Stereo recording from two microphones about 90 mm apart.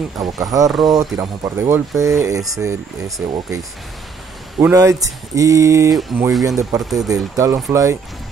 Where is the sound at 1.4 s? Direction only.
30° right (ahead or behind).